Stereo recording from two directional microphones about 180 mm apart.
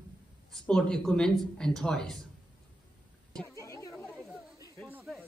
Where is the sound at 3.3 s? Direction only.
5° left (ahead or behind).